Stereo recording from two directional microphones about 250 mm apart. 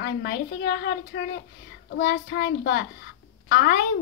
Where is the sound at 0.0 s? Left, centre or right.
Left.